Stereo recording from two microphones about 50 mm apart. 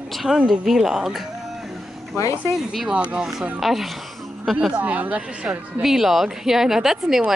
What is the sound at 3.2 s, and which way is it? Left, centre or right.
Speech, centre.